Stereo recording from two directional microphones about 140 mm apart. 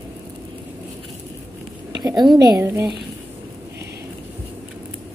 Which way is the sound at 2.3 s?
25° right (ahead or behind).